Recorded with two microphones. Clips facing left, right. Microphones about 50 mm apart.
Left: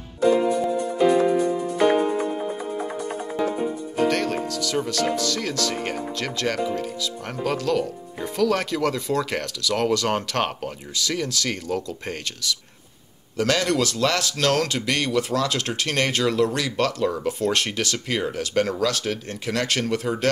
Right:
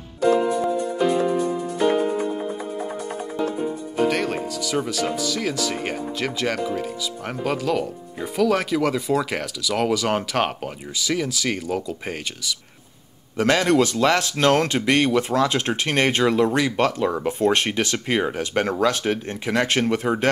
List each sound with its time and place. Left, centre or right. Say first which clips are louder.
4.1 s speech: even; centre
13.4 s speech: right 4 dB; right